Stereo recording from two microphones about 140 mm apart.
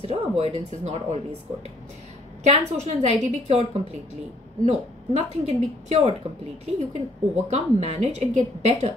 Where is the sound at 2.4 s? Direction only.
55° right (ahead or behind).